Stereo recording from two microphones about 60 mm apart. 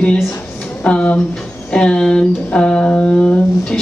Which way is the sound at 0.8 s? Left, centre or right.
Centre.